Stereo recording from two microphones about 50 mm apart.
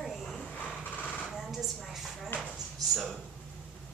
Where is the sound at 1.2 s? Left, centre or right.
Centre.